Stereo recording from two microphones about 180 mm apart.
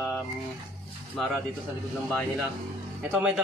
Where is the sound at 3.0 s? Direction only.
5° right (ahead or behind).